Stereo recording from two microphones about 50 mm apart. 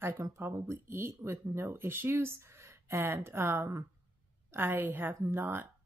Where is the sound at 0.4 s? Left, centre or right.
Right.